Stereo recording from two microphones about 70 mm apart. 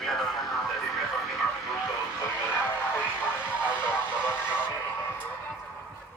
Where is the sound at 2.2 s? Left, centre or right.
Left.